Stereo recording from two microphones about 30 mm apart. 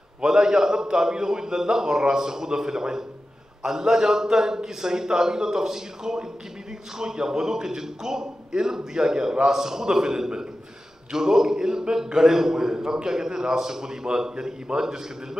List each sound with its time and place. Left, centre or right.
0.2 s a man's voice: right